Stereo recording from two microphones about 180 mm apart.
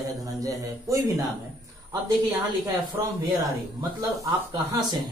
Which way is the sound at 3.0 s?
20° right (ahead or behind).